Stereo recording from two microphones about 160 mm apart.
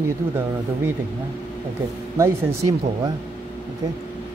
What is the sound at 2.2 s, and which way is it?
Speech, 20° right (ahead or behind).